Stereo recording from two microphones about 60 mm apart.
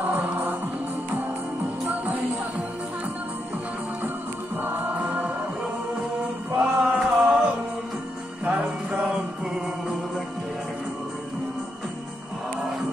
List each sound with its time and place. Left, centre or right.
4.6 s music: right
6.5 s music: centre
8.5 s music: right